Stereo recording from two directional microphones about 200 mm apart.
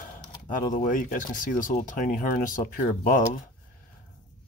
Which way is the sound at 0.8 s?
40° left (ahead or behind).